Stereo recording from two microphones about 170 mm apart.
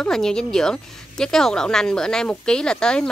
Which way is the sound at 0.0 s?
5° left (ahead or behind).